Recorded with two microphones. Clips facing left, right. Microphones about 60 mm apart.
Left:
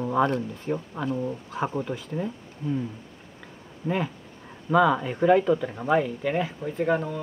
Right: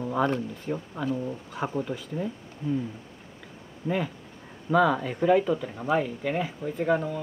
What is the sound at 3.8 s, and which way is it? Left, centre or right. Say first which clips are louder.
Speech: left 1 dB; left.